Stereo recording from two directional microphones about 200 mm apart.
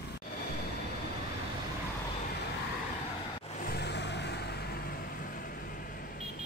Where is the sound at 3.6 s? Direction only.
50° left (ahead or behind).